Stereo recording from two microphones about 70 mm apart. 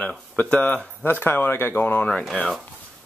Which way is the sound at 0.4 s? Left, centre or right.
Centre.